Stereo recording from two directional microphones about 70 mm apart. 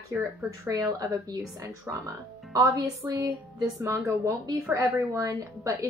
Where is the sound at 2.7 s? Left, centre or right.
Right.